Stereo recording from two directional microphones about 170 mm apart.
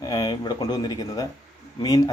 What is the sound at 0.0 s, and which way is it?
Speech, 20° left (ahead or behind).